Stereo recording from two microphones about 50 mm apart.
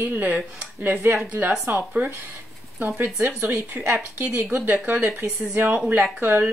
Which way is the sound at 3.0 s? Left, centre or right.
Right.